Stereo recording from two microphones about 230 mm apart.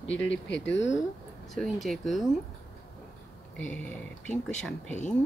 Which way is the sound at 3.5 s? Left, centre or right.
Centre.